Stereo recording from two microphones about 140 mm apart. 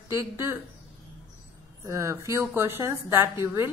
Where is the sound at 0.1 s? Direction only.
20° right (ahead or behind).